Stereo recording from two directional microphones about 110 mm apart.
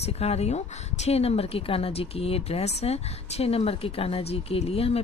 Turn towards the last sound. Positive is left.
turn(degrees=65)  # may be behind; listen again after turning